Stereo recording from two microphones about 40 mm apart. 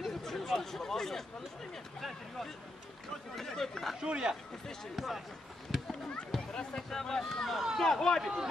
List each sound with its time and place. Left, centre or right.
0.2 s speech: centre
4.0 s speech: centre
4.9 s speech: centre
5.7 s a sound: centre
6.3 s speech: centre
7.5 s speech: centre
7.8 s speech: centre